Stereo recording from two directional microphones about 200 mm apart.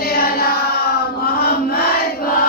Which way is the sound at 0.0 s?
50° left (ahead or behind).